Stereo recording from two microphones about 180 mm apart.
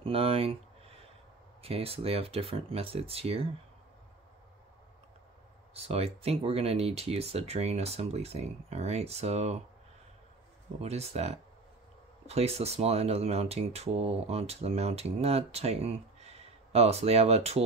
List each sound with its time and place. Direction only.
0.0 s speech: 30° right (ahead or behind)
1.6 s speech: 30° right (ahead or behind)
5.7 s speech: 35° right (ahead or behind)
10.8 s speech: 35° right (ahead or behind)